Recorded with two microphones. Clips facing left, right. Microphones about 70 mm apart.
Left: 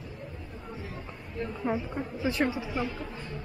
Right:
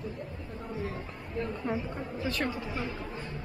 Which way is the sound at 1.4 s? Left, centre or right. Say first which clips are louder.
Left 2 dB; centre.